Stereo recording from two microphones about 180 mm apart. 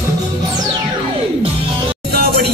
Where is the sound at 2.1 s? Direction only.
60° right (ahead or behind).